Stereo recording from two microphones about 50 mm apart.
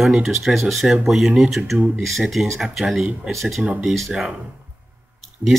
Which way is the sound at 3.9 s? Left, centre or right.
Centre.